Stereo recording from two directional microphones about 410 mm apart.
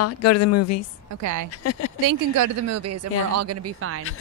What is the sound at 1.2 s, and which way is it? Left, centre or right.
Speech, right.